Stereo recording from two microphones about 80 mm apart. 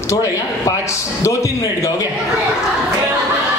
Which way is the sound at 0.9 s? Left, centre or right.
Left.